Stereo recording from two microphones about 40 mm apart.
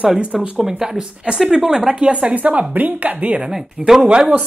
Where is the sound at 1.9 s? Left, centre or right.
Right.